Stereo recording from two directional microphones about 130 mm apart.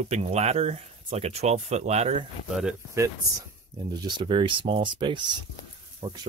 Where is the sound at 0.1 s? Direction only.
55° right (ahead or behind).